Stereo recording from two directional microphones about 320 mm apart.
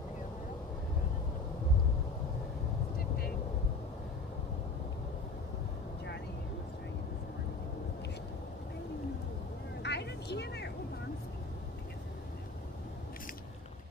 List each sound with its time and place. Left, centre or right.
9.8 s vehicle: left